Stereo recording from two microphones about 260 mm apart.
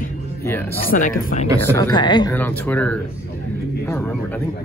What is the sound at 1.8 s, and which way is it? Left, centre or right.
A man's voice, centre.